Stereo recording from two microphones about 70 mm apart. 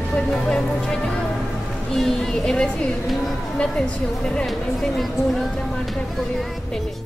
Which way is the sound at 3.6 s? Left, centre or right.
Centre.